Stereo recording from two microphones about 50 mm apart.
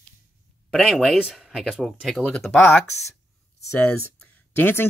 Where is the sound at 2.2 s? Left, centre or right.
Right.